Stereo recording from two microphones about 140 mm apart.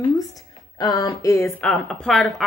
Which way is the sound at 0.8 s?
25° left (ahead or behind).